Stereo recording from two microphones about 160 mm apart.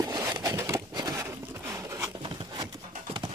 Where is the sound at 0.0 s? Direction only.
25° right (ahead or behind).